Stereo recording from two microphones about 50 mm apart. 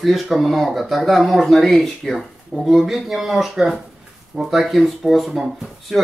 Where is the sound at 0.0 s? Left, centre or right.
Centre.